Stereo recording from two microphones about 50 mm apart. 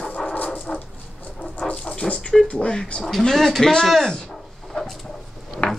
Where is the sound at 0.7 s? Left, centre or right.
Left.